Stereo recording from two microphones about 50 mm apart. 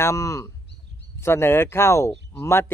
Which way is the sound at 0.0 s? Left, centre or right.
Left.